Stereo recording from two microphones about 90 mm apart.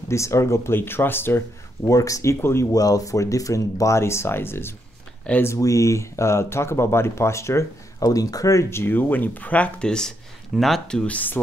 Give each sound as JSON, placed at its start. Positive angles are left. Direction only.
{"t": 0.1, "sound": "speech", "side_deg": 35}
{"t": 1.9, "sound": "speech", "side_deg": 40}
{"t": 2.7, "sound": "speech", "side_deg": 40}